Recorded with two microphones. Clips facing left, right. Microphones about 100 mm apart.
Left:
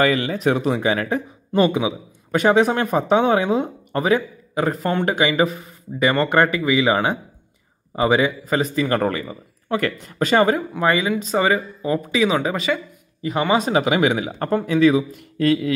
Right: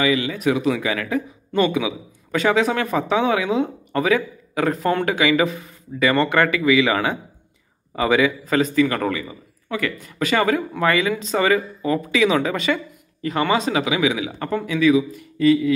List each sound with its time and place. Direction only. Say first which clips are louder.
0.0 s speech: left 2 dB; 45° left (ahead or behind)
0.4 s a man's voice: left 1 dB; 35° left (ahead or behind)
8.7 s a man's voice: right 1 dB; 35° left (ahead or behind); by 13.7 s 20° left (ahead or behind)
13.7 s speech: left 2 dB; 35° left (ahead or behind)
15.3 s speech: right 2 dB; 60° left (ahead or behind)